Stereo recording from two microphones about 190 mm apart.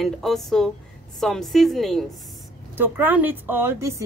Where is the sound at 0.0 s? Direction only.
Centre (ahead or behind).